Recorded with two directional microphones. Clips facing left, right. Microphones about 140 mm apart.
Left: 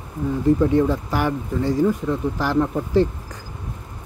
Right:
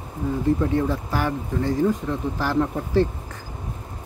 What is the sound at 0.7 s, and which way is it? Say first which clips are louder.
Speech: left 4 dB; 15° left (ahead or behind).